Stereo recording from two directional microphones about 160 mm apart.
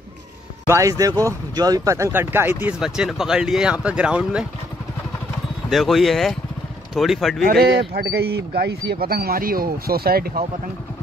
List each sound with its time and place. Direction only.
0.7 s speech: 20° right (ahead or behind)
2.8 s speech: 5° right (ahead or behind)
5.7 s speech: centre (ahead or behind)
7.4 s speech: 85° right